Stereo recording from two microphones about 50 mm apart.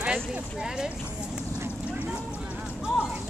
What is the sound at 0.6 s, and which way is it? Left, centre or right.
Speech, centre.